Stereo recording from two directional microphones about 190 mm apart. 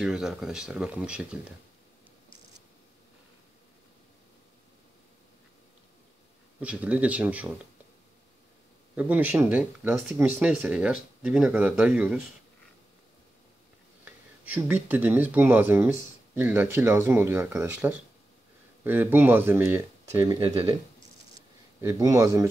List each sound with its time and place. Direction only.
0.0 s speech: centre (ahead or behind)
6.6 s speech: 5° right (ahead or behind)
8.9 s speech: 10° right (ahead or behind)
14.0 s speech: 10° right (ahead or behind)
21.8 s speech: 15° right (ahead or behind)